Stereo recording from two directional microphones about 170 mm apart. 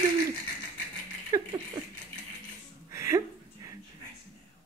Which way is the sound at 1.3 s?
15° right (ahead or behind).